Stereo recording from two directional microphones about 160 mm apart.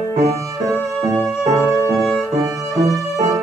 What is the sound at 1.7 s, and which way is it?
Music, centre (ahead or behind).